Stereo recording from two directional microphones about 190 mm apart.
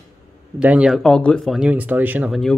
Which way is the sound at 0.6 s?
5° right (ahead or behind).